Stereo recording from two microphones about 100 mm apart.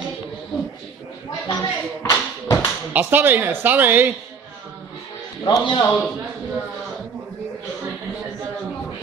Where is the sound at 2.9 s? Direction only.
20° right (ahead or behind).